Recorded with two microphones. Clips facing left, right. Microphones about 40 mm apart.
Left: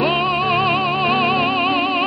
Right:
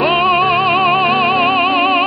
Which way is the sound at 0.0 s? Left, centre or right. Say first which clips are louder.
Right 5 dB; right.